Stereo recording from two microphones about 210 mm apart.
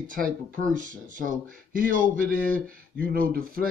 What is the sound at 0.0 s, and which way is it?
Speech, 40° right (ahead or behind).